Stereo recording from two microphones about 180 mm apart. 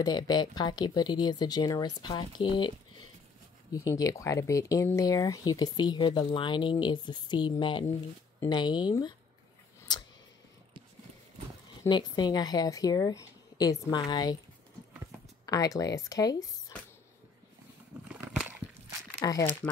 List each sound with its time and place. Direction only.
0.0 s speech: 20° left (ahead or behind)
3.7 s speech: 20° left (ahead or behind)
11.9 s speech: 25° left (ahead or behind)
15.4 s speech: 20° left (ahead or behind)
18.0 s a sound: 5° right (ahead or behind)
19.2 s speech: 20° left (ahead or behind)